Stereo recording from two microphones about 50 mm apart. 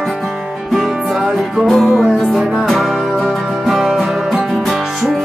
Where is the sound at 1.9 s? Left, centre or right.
Centre.